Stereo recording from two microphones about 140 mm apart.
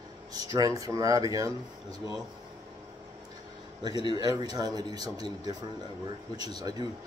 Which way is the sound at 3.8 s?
30° right (ahead or behind).